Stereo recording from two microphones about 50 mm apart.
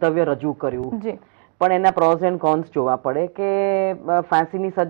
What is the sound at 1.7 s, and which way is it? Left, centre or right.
Speech, centre.